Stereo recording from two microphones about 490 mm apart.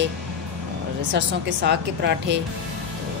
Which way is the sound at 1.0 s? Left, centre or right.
Right.